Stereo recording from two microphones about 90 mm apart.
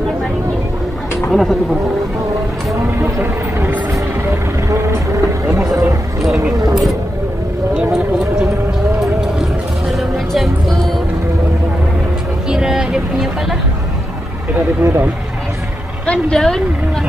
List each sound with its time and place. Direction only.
1.3 s speech: centre (ahead or behind)
2.7 s speech: 25° right (ahead or behind)
4.6 s vehicle: 35° right (ahead or behind)
6.7 s vehicle: centre (ahead or behind)
9.9 s music: centre (ahead or behind)
12.4 s a sound: 5° right (ahead or behind)
14.8 s speech: 25° right (ahead or behind)
16.1 s speech: 10° left (ahead or behind)